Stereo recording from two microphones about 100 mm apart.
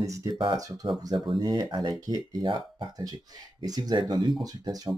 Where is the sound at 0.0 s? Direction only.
35° right (ahead or behind).